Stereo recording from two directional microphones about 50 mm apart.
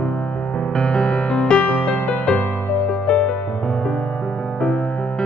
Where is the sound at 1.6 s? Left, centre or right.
Left; by 3.9 s centre.